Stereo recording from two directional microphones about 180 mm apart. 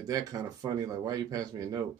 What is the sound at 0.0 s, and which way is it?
Speech, 20° right (ahead or behind).